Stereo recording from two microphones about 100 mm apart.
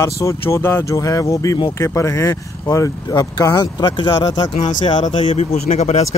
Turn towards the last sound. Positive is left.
turn(degrees=90)